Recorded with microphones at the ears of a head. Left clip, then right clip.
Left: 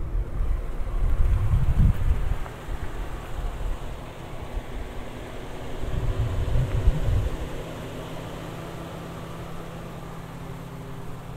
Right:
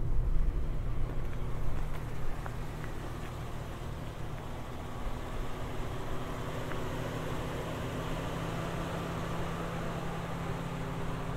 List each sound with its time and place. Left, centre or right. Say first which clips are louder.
1.5 s vehicle: left 9 dB; left
6.5 s vehicle: left 4 dB; left